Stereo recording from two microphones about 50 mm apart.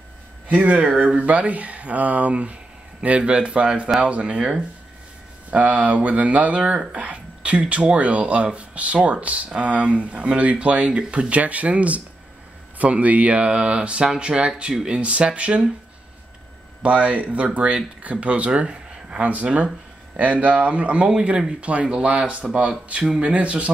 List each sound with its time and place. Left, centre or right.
0.5 s speech: right
7.0 s a sound: right
7.6 s speech: right
16.8 s speech: right
19.2 s speech: right